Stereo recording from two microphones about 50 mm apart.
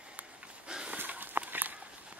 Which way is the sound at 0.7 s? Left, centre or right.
Centre.